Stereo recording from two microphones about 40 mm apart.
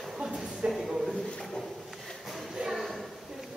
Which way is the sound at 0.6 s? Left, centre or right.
Right.